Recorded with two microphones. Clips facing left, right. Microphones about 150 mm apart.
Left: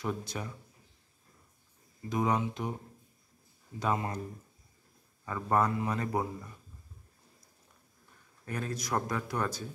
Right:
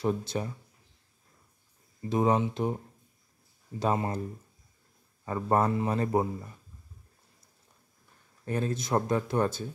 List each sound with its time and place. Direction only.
0.0 s speech: 30° right (ahead or behind)
2.0 s speech: 30° right (ahead or behind)
3.8 s a man's voice: 30° right (ahead or behind)
5.2 s a man's voice: 30° right (ahead or behind)
8.5 s speech: 25° right (ahead or behind)